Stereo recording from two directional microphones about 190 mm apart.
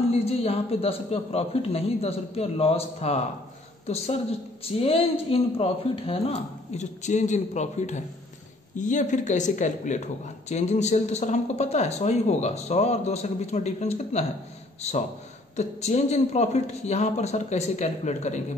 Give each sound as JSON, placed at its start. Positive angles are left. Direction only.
{"t": 0.2, "sound": "a woman's voice", "side_deg": 30}